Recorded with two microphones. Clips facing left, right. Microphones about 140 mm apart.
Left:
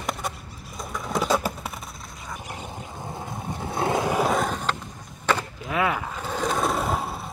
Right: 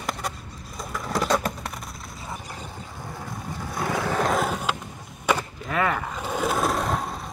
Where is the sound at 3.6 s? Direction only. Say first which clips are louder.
Left 3 dB; 25° left (ahead or behind).